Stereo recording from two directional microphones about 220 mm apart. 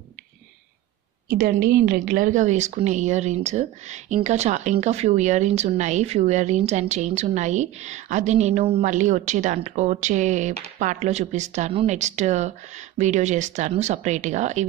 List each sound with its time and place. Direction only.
1.3 s speech: 40° right (ahead or behind)